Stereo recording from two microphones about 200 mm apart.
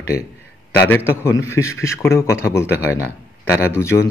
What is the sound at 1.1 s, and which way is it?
Speech, 15° left (ahead or behind).